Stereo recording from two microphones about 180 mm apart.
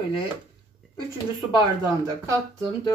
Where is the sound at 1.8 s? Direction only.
20° right (ahead or behind).